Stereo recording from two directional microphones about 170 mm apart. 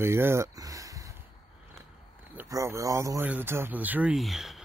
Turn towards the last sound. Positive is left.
turn(degrees=0)  # may be behind; listen again after turning